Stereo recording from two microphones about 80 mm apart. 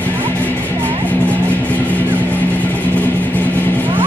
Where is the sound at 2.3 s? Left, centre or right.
Left.